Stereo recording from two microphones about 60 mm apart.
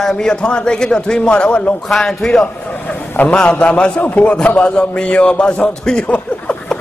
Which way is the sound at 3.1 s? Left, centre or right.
Left.